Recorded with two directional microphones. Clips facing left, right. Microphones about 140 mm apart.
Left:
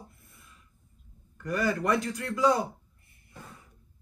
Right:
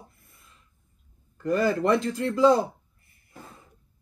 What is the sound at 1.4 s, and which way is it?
A man's voice, 25° right (ahead or behind).